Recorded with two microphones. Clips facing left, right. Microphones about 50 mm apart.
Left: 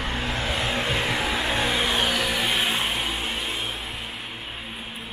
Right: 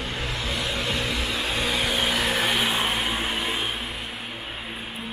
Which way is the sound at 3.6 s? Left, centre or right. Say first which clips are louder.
Right 2 dB; right.